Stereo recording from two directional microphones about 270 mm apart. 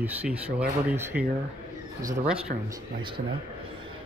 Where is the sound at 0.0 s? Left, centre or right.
Centre.